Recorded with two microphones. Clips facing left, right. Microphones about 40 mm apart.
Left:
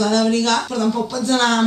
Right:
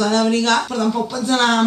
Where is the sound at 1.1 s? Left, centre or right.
Right.